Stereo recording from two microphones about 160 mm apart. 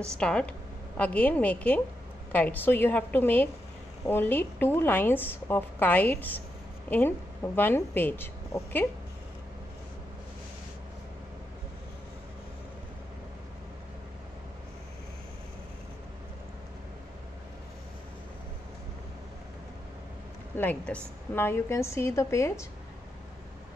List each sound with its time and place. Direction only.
0.2 s a woman's voice: 5° left (ahead or behind)
20.5 s speech: 10° left (ahead or behind)